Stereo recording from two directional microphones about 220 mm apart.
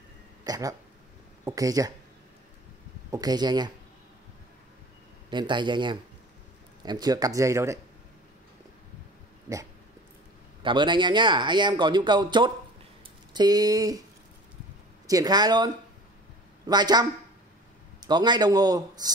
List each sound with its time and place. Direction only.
0.4 s speech: 15° right (ahead or behind)
3.1 s speech: 20° right (ahead or behind)
5.3 s speech: 20° right (ahead or behind)
10.6 s speech: 20° right (ahead or behind)
15.0 s speech: 15° right (ahead or behind)